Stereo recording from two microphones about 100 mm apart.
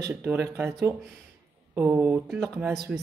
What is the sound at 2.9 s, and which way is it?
Speech, 15° right (ahead or behind).